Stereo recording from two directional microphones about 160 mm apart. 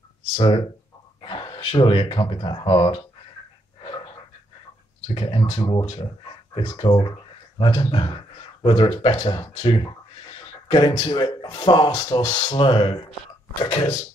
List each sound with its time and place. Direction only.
0.4 s speech: 35° left (ahead or behind)
5.0 s speech: 35° left (ahead or behind)